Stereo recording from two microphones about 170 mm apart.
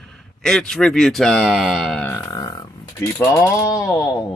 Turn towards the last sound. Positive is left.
turn(degrees=25)  # may be behind; listen again after turning